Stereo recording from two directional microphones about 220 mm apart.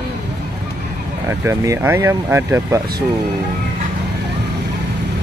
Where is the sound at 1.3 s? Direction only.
10° right (ahead or behind).